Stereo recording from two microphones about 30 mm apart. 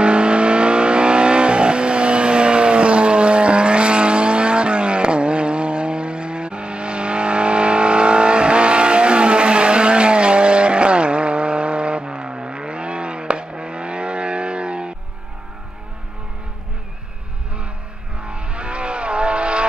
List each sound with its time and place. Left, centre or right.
0.0 s vehicle: right
18.2 s vehicle: right